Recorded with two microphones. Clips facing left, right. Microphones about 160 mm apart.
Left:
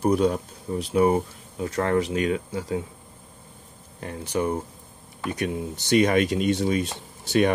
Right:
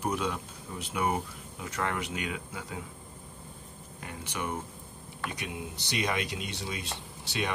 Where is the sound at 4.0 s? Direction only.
35° left (ahead or behind).